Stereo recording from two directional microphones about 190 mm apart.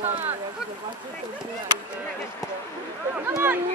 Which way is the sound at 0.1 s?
10° right (ahead or behind).